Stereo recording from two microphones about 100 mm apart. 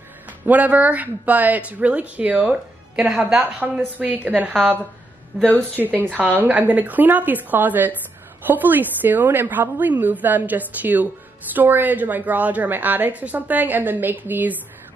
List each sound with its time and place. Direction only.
0.5 s a woman's voice: 15° right (ahead or behind)